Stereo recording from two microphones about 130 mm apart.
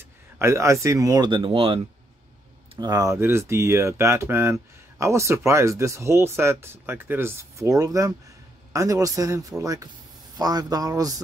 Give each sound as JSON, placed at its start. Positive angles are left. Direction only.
{"t": 0.4, "sound": "speech", "side_deg": -20}
{"t": 2.8, "sound": "speech", "side_deg": -30}